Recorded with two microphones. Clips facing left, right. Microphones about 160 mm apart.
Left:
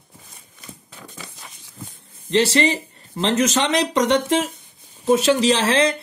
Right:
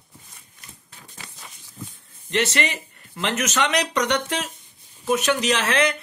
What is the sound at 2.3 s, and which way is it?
Speech, 30° left (ahead or behind).